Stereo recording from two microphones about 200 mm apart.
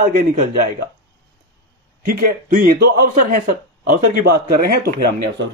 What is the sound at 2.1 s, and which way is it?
Speech, 45° right (ahead or behind).